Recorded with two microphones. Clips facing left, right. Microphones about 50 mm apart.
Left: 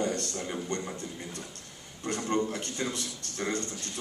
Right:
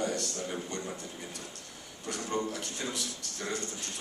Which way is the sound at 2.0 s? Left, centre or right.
Left.